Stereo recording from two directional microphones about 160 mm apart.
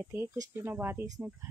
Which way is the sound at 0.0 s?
15° right (ahead or behind).